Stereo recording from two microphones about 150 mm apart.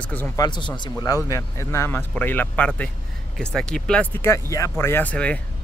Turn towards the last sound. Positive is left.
turn(degrees=10)  # may be behind; listen again after turning